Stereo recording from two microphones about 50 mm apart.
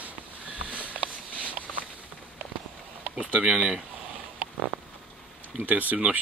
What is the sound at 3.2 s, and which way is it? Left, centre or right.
Speech, right.